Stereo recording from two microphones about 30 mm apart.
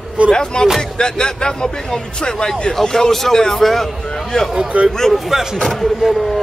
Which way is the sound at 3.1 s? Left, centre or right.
Centre.